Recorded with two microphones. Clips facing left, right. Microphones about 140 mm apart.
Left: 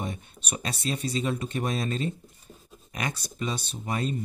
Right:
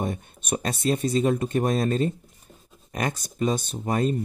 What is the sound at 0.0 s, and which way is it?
Speech, 50° right (ahead or behind).